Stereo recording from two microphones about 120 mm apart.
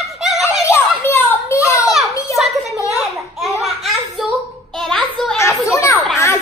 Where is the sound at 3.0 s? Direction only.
Centre (ahead or behind).